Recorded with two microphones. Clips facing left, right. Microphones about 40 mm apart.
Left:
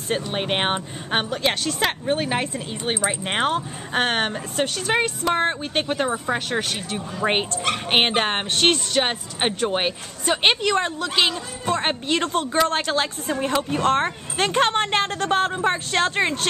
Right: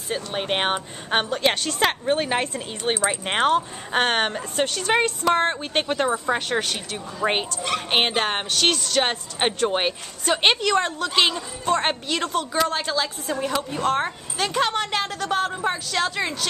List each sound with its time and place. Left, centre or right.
0.1 s speech: left
0.5 s speech: centre; by 8.8 s left
8.9 s speech: centre
12.1 s speech: left
12.6 s speech: left
13.3 s speech: left